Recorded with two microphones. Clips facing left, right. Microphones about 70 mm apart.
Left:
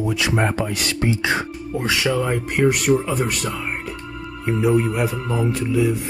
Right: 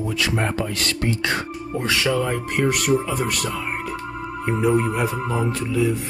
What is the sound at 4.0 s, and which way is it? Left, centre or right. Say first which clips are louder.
Music: right 3 dB; right.